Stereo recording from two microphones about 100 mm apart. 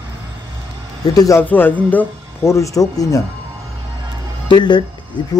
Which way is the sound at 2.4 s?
30° left (ahead or behind).